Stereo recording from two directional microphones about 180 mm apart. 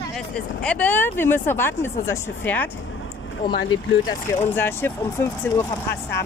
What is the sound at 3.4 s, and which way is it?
Speech, 55° left (ahead or behind).